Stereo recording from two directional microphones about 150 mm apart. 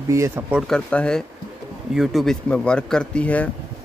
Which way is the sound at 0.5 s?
Centre (ahead or behind).